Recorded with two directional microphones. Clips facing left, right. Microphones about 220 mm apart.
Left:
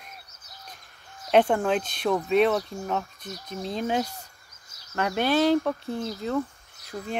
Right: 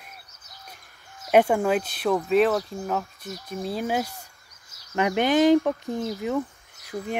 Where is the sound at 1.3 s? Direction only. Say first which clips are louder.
Right 2 dB; 10° right (ahead or behind).